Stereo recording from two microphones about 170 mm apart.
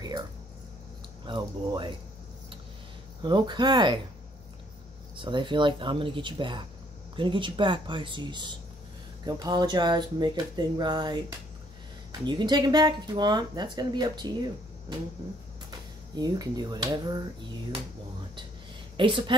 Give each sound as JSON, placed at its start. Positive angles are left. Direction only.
{"t": 1.2, "sound": "speech", "side_deg": -25}
{"t": 3.2, "sound": "speech", "side_deg": -25}
{"t": 5.1, "sound": "speech", "side_deg": -30}
{"t": 16.2, "sound": "speech", "side_deg": -25}
{"t": 18.9, "sound": "speech", "side_deg": -30}